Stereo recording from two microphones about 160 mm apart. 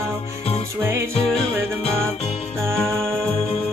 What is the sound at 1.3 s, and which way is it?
Music, 5° left (ahead or behind).